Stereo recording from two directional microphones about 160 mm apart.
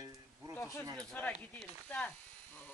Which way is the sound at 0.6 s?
15° left (ahead or behind).